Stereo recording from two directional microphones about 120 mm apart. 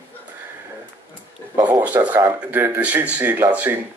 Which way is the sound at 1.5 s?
25° right (ahead or behind).